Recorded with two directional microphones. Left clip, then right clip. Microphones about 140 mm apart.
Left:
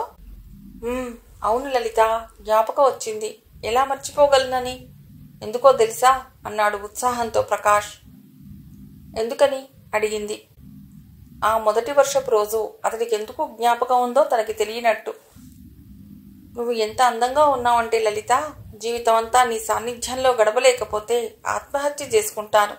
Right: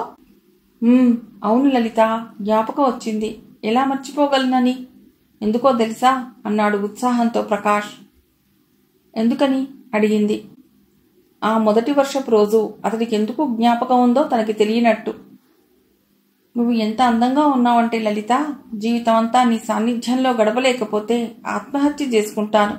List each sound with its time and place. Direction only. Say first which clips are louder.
0.8 s a woman's voice: right 11 dB; 35° left (ahead or behind)
9.1 s a woman's voice: even; 45° left (ahead or behind)
16.5 s a woman's voice: right 2 dB; 45° left (ahead or behind)